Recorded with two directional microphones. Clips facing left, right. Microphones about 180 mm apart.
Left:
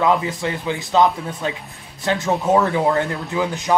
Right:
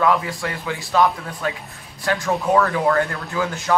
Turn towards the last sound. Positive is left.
turn(degrees=20)  # may be behind; listen again after turning